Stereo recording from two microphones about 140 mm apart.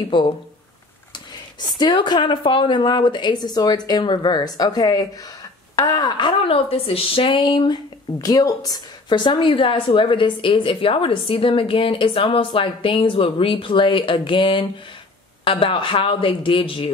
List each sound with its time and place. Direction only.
0.1 s a woman's voice: 35° left (ahead or behind)